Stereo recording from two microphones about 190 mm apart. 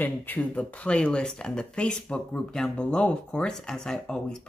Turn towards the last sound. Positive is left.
turn(degrees=5)  # may be behind; listen again after turning